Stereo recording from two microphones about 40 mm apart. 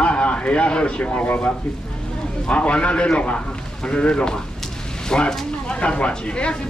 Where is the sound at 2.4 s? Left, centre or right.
Left.